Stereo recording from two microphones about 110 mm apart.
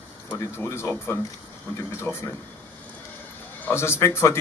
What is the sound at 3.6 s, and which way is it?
Speech, 25° left (ahead or behind).